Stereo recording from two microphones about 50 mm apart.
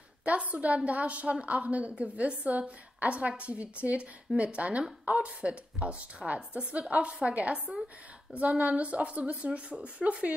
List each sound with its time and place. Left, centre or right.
0.2 s a woman's voice: right